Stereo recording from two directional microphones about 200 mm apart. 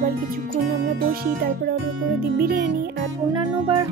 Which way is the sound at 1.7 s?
50° right (ahead or behind).